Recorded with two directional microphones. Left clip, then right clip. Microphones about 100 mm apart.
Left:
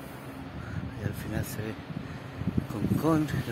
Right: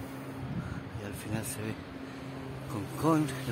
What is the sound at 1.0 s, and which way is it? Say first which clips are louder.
Vehicle: left 2 dB; 15° left (ahead or behind).